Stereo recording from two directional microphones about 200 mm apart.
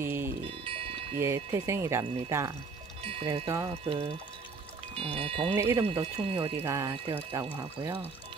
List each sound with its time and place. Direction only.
0.0 s music: 10° right (ahead or behind)
0.7 s wind chime: 25° right (ahead or behind)
1.2 s speech: 15° right (ahead or behind)
3.0 s speech: 30° right (ahead or behind)
3.4 s speech: 15° right (ahead or behind)
3.7 s speech: 30° right (ahead or behind)
5.5 s speech: 10° right (ahead or behind)
5.9 s speech: 30° right (ahead or behind)
6.5 s speech: 15° right (ahead or behind)